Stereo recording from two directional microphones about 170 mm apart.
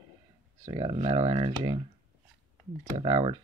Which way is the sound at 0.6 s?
25° right (ahead or behind).